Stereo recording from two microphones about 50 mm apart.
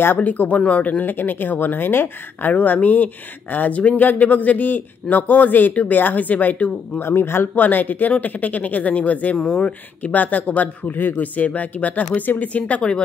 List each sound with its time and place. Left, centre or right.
0.2 s speech: left
2.5 s speech: left
7.0 s speech: left
7.5 s speech: left
10.1 s speech: left